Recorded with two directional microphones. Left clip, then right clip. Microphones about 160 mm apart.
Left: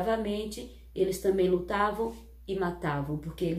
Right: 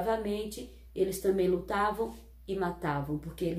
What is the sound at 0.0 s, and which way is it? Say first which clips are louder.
A woman's voice: left 1 dB; 20° right (ahead or behind).